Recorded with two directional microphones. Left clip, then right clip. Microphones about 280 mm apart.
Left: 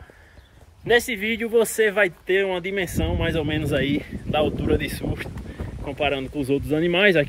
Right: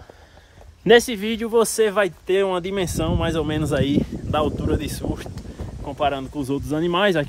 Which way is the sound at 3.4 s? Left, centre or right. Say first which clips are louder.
Right 1 dB; right.